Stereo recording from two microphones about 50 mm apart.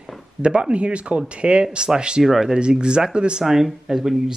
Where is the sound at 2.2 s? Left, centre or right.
Centre.